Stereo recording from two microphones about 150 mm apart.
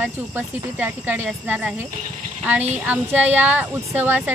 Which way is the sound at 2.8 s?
10° right (ahead or behind).